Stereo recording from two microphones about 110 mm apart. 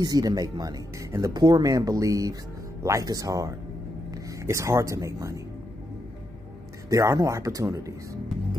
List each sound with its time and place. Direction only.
0.0 s speech: 35° right (ahead or behind)
6.9 s speech: 30° right (ahead or behind)